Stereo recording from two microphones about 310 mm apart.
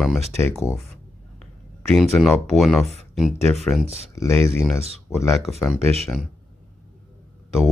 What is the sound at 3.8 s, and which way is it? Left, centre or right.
Speech, centre.